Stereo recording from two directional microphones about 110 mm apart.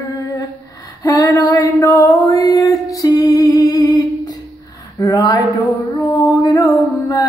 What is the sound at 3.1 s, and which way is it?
Music, 30° left (ahead or behind).